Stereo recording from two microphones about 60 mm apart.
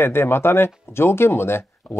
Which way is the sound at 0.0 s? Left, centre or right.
Left.